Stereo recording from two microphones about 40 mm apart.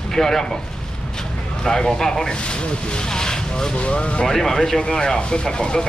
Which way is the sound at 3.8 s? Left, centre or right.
Left.